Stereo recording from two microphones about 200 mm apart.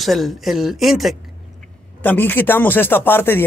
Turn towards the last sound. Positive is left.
turn(degrees=10)  # may be behind; listen again after turning